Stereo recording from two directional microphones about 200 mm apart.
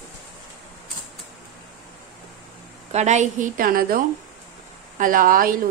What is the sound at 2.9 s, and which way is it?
A woman's voice, 35° right (ahead or behind).